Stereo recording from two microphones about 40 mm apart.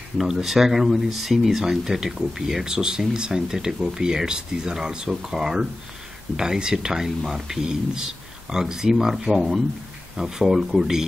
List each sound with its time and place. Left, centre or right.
0.2 s speech: centre
8.9 s speech: centre